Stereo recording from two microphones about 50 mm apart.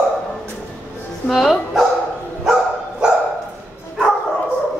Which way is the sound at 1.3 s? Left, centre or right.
Centre.